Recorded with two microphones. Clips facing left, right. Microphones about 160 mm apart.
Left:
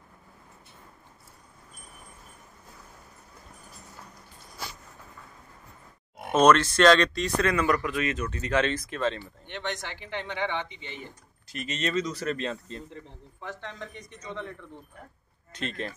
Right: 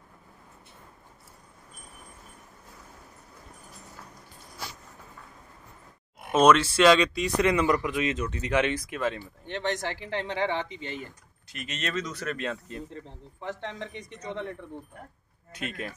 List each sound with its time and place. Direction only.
6.3 s speech: 5° right (ahead or behind)
9.2 s speech: 35° right (ahead or behind)
11.5 s speech: centre (ahead or behind)
13.4 s speech: 25° right (ahead or behind)
15.5 s speech: 10° right (ahead or behind)